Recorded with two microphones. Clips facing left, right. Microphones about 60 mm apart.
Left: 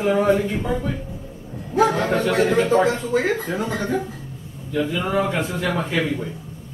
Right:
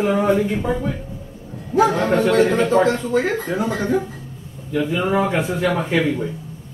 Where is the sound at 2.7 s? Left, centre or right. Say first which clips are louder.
Right 2 dB; centre.